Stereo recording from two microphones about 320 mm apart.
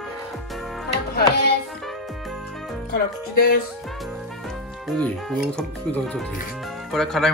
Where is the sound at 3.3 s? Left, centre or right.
Left.